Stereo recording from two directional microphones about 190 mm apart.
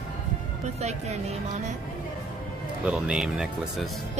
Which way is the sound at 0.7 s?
35° right (ahead or behind).